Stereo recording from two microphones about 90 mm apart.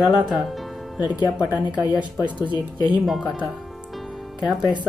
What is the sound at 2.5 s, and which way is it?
Speech, 55° left (ahead or behind).